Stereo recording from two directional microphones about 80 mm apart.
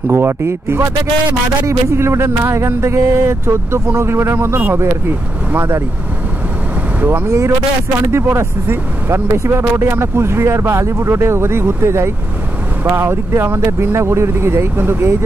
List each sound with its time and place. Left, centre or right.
0.1 s speech: right
7.0 s speech: right